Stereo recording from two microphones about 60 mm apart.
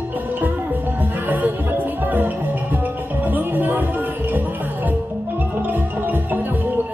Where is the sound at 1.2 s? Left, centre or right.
Right.